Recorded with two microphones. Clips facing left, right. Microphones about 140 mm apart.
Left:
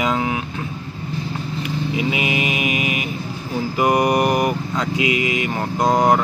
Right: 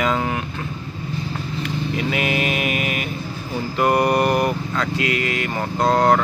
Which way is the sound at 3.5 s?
10° left (ahead or behind).